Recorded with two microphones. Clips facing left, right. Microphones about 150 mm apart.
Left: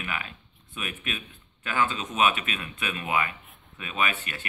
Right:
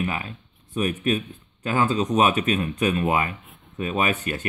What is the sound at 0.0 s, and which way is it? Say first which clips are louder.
Speech: right 7 dB; 35° right (ahead or behind).